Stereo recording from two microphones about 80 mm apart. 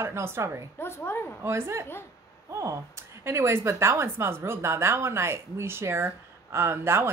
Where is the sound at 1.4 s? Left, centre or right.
Right.